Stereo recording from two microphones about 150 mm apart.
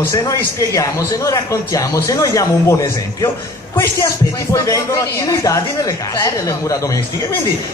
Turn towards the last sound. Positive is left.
turn(degrees=20)  # may be behind; listen again after turning